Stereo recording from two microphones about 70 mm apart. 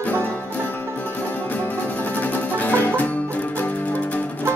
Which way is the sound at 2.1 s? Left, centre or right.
Left.